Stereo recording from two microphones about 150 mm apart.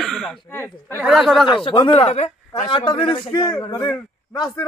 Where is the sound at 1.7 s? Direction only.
35° left (ahead or behind).